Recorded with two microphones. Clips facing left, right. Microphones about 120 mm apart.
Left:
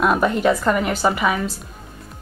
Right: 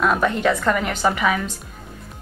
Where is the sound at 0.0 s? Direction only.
5° left (ahead or behind).